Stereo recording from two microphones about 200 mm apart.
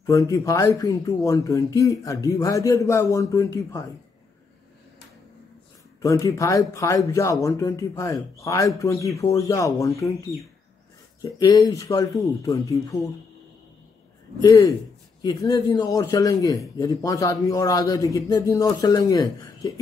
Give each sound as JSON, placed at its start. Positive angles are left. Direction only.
{"t": 0.0, "sound": "a man's voice", "side_deg": 15}
{"t": 6.0, "sound": "a man's voice", "side_deg": 15}
{"t": 11.1, "sound": "a man's voice", "side_deg": 20}
{"t": 14.4, "sound": "a man's voice", "side_deg": 15}